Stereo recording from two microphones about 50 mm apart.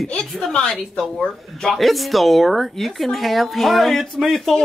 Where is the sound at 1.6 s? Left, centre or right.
Centre.